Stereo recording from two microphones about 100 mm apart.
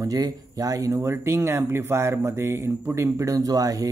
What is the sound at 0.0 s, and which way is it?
Speech, 40° right (ahead or behind).